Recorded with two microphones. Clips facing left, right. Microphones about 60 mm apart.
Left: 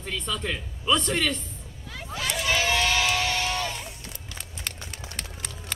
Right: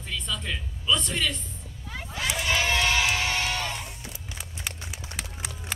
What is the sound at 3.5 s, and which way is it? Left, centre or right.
Music, centre.